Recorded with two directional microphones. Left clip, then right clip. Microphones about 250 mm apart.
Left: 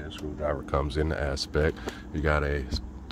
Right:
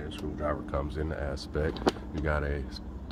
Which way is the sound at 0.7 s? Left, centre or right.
Left.